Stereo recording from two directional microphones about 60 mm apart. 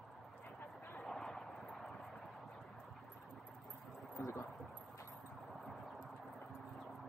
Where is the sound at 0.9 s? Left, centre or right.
Centre.